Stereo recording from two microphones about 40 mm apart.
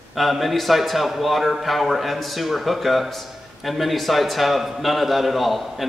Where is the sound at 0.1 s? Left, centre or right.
Centre.